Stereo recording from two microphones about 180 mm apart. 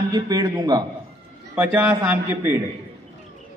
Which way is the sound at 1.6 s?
10° right (ahead or behind).